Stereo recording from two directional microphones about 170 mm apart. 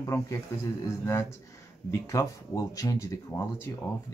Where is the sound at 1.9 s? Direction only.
20° left (ahead or behind).